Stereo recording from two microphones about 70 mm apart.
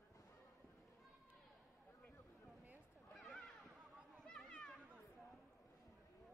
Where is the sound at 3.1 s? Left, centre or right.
Centre.